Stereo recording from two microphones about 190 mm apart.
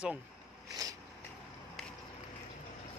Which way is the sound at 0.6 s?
20° right (ahead or behind).